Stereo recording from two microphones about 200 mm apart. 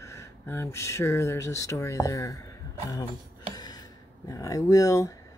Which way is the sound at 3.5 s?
20° left (ahead or behind).